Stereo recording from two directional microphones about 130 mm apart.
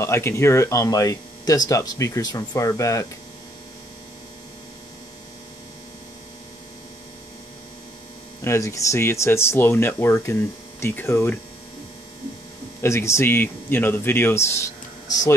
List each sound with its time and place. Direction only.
0.0 s speech: 20° left (ahead or behind)
8.5 s speech: 25° left (ahead or behind)
12.8 s speech: 20° left (ahead or behind)